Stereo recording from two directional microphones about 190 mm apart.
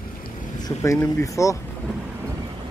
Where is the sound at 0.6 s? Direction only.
15° left (ahead or behind).